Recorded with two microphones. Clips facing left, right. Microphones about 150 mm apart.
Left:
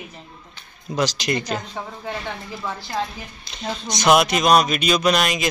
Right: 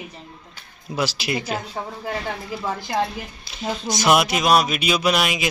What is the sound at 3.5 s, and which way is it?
Speech, 5° right (ahead or behind).